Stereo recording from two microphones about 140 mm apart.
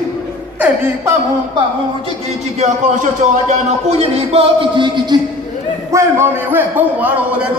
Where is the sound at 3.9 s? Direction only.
45° right (ahead or behind).